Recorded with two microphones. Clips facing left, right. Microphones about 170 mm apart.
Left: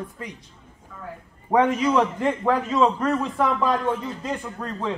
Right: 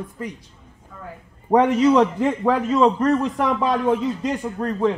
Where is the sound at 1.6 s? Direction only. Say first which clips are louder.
Right 4 dB; 5° right (ahead or behind).